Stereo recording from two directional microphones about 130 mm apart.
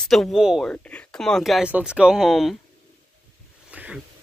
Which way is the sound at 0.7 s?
10° left (ahead or behind).